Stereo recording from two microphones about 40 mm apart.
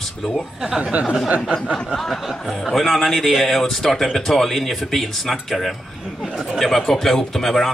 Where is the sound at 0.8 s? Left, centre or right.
Right.